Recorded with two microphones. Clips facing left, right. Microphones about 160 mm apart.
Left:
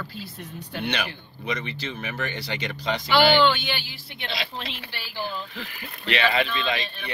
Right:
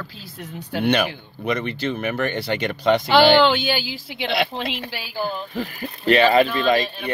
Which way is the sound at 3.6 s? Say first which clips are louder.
Right 8 dB; 90° right.